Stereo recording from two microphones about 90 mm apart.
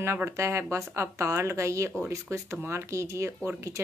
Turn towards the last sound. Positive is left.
turn(degrees=-30)  # may be behind; listen again after turning